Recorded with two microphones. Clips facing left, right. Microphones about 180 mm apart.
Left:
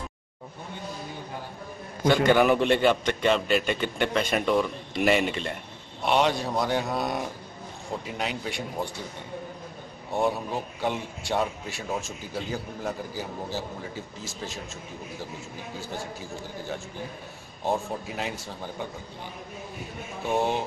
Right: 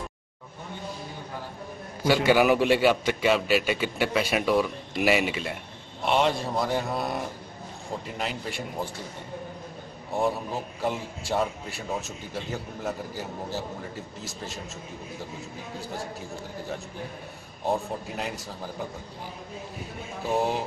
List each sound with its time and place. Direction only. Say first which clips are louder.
2.0 s a man's voice: even; 5° right (ahead or behind)
10.1 s a man's voice: left 1 dB; centre (ahead or behind)
15.8 s a man's voice: right 1 dB; centre (ahead or behind)
20.2 s a man's voice: even; centre (ahead or behind)